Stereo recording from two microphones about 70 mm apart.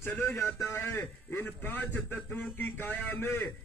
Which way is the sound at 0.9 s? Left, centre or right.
Left.